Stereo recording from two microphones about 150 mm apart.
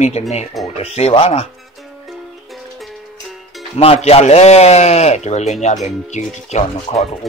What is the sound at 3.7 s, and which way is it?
Speech, 45° left (ahead or behind).